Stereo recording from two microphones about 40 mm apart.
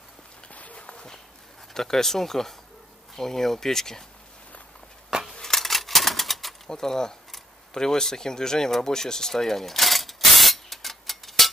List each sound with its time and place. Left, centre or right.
0.5 s walk: left
1.7 s speech: centre
5.4 s typewriter: centre
6.7 s speech: centre
7.7 s a sound: centre